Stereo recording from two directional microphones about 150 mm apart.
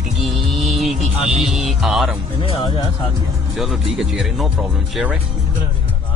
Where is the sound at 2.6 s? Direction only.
30° left (ahead or behind).